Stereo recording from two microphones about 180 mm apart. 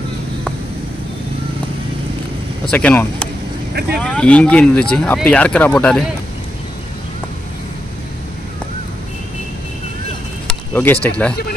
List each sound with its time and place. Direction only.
2.7 s speech: 10° left (ahead or behind)
10.7 s speech: 10° left (ahead or behind)